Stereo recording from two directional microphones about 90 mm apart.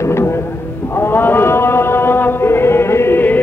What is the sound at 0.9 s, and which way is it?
Chant, 25° left (ahead or behind).